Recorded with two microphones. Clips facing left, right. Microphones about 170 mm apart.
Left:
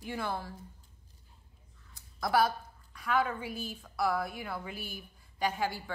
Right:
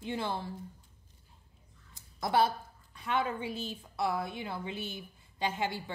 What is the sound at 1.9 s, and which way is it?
A woman's voice, 25° right (ahead or behind).